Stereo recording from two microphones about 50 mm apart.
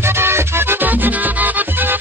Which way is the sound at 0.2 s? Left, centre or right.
Right.